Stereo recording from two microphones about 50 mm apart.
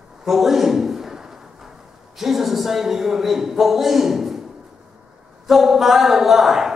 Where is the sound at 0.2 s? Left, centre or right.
Centre.